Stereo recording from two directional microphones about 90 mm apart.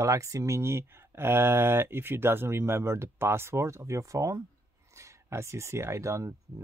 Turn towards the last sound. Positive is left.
turn(degrees=-30)  # may be behind; listen again after turning